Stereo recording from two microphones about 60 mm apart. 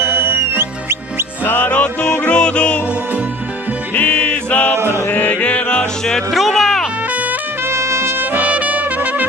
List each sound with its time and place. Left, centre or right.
0.0 s music: right
1.4 s music: left
1.7 s music: centre
3.9 s music: left
4.7 s music: right
5.1 s music: centre
6.3 s music: centre
7.6 s trumpet: right